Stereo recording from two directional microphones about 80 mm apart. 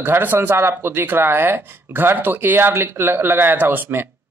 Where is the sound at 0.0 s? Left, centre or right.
Right.